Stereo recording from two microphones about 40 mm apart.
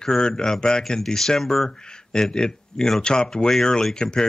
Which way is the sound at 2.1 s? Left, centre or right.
Centre.